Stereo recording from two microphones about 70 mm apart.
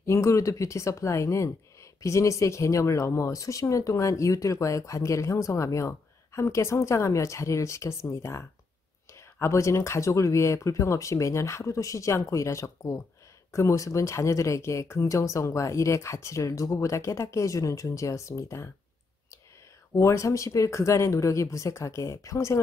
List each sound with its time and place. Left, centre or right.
0.0 s speech: left
20.0 s speech: left